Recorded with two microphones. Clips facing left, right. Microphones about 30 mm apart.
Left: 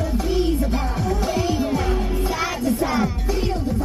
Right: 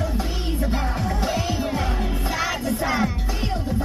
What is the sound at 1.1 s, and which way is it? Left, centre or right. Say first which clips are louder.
Music: left 3 dB; right.